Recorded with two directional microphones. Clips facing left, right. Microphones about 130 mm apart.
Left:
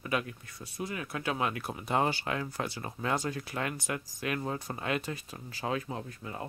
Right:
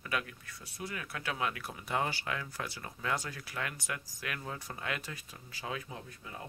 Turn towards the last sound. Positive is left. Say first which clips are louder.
# left 6 dB
turn(degrees=45)  # may be behind; listen again after turning